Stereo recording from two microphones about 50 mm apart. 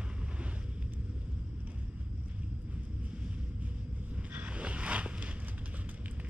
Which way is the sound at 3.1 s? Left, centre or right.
Right.